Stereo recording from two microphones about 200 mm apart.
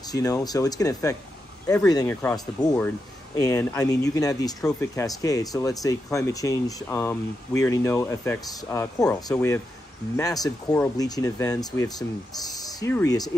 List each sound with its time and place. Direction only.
0.1 s speech: 20° left (ahead or behind)
3.3 s speech: 15° left (ahead or behind)